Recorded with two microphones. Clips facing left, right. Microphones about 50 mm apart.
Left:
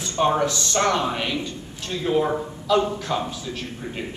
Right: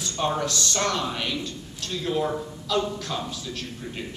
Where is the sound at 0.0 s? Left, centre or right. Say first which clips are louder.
Left 6 dB; left.